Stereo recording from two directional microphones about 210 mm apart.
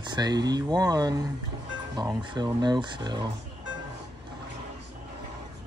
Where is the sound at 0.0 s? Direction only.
20° right (ahead or behind).